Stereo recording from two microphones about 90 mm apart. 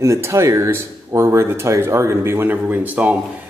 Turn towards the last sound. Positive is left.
turn(degrees=-15)  # may be behind; listen again after turning